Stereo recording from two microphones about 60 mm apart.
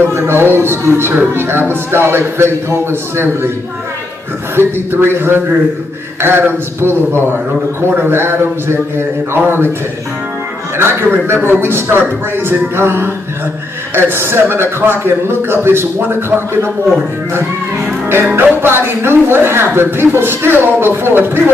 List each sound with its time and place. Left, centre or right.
0.0 s speech: right
4.6 s speech: right
10.8 s speech: right
18.0 s speech: right